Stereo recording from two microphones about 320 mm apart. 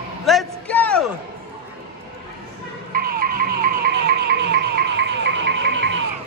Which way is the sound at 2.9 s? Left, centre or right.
Right.